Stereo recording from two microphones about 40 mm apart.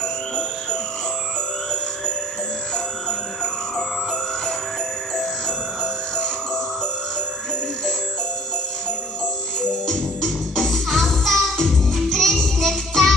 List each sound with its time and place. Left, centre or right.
0.0 s music: centre
2.7 s music: centre
5.1 s music: centre
9.6 s music: centre